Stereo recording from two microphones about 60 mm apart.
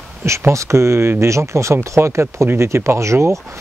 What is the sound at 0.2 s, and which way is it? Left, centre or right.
Speech, right.